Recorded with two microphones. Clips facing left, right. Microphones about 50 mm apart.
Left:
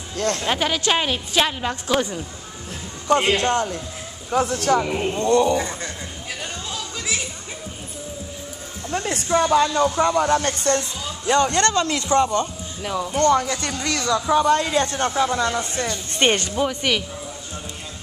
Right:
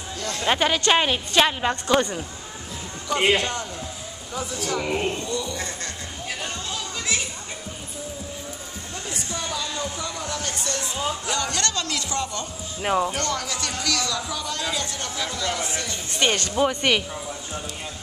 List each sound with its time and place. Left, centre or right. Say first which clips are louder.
0.4 s a woman's voice: right 1 dB; centre
1.9 s speech: even; centre
3.2 s a woman's voice: right 4 dB; centre
3.4 s speech: left 8 dB; left
4.8 s a woman's voice: left 1 dB; centre
5.2 s speech: left 12 dB; left
5.6 s speech: left 5 dB; centre
6.4 s music: left 2 dB; centre
8.9 s speech: left 12 dB; left
12.8 s speech: right 4 dB; right
13.2 s speech: left 9 dB; left
16.5 s a woman's voice: right 1 dB; centre